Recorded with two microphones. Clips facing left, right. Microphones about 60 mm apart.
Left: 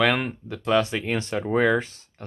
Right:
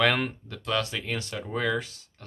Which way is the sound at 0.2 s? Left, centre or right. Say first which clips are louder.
Left 2 dB; centre.